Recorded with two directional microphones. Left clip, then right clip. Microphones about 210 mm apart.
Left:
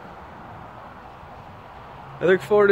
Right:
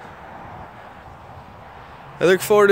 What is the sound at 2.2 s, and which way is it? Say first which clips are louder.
Speech: right 3 dB; 40° right (ahead or behind).